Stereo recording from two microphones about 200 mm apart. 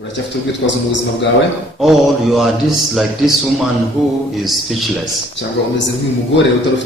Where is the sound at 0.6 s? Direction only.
65° left (ahead or behind).